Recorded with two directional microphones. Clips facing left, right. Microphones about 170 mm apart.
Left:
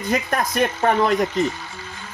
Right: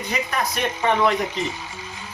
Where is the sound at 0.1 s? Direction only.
50° left (ahead or behind).